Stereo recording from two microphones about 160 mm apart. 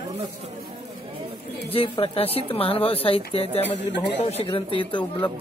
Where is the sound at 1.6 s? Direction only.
35° left (ahead or behind).